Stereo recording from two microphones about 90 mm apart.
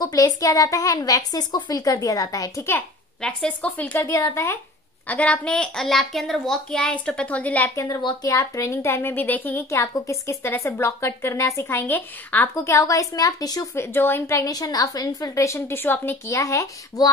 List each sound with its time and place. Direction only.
0.0 s a woman's voice: 40° left (ahead or behind)
3.2 s a woman's voice: 10° left (ahead or behind)
4.1 s a woman's voice: 35° left (ahead or behind)
5.0 s a woman's voice: 15° left (ahead or behind)
7.7 s a woman's voice: 35° left (ahead or behind); by 9.7 s 20° left (ahead or behind)
9.7 s a woman's voice: 35° left (ahead or behind)
11.8 s a woman's voice: 20° left (ahead or behind)
12.5 s a woman's voice: 35° left (ahead or behind)
13.7 s a woman's voice: 25° left (ahead or behind)
16.3 s a woman's voice: 35° left (ahead or behind)